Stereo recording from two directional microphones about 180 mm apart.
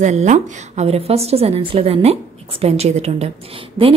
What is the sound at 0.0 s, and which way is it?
Speech, 40° right (ahead or behind).